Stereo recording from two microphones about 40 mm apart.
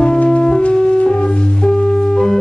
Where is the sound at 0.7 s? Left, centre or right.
Centre.